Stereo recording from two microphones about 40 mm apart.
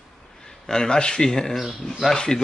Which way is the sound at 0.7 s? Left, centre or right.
Centre.